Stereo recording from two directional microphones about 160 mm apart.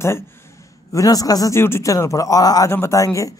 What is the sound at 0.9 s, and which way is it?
A man's voice, 20° left (ahead or behind).